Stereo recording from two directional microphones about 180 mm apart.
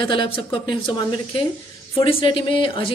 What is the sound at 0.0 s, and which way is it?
Speech, 30° left (ahead or behind).